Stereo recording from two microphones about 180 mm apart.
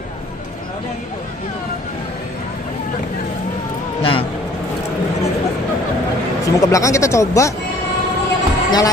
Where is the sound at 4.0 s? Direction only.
30° left (ahead or behind).